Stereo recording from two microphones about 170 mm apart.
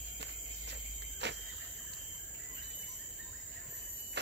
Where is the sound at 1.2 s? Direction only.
90° right.